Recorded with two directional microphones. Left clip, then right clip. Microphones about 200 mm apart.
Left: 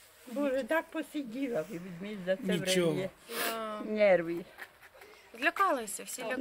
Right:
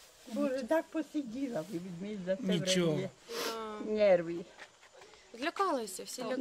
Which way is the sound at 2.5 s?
55° right (ahead or behind).